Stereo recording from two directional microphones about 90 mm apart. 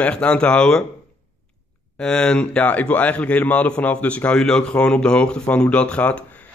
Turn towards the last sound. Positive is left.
turn(degrees=15)  # may be behind; listen again after turning